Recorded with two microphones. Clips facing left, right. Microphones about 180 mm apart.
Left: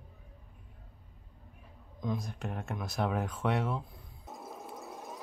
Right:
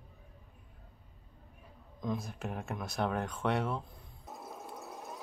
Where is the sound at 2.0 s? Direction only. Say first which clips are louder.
Left 1 dB; centre (ahead or behind).